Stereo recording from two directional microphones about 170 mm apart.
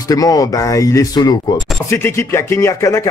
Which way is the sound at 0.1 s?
20° left (ahead or behind).